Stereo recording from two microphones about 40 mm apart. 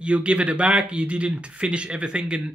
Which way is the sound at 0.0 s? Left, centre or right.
Right.